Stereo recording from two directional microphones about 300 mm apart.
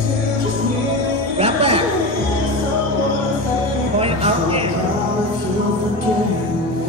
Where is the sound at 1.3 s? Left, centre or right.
Centre.